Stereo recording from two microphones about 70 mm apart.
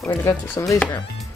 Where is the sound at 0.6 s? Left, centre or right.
Left.